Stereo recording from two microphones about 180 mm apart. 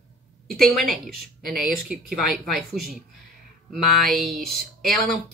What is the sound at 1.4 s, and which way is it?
Speech, 55° right (ahead or behind).